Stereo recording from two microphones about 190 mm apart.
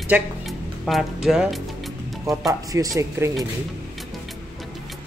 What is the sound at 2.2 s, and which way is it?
Speech, 20° right (ahead or behind).